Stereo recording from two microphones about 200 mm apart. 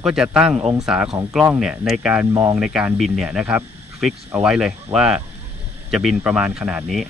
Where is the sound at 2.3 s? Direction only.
15° right (ahead or behind).